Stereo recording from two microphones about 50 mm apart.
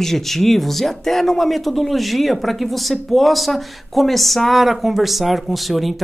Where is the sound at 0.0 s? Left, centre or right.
Centre.